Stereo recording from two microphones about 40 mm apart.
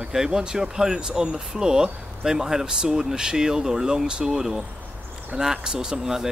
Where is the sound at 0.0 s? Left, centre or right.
Centre.